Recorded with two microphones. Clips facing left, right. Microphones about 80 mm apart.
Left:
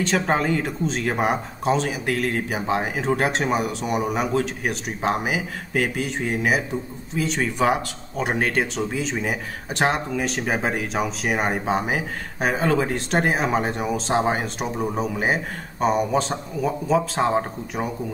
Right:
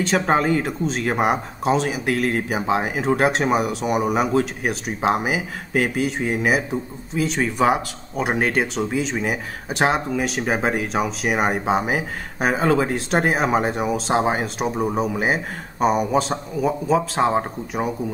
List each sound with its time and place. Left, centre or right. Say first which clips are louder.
0.0 s speech: right 2 dB; centre
14.7 s speech: right 3 dB; centre